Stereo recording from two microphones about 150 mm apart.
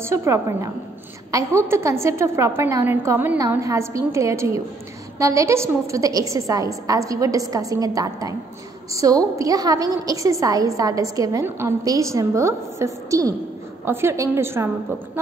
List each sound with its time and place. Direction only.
0.0 s a woman's voice: 20° right (ahead or behind)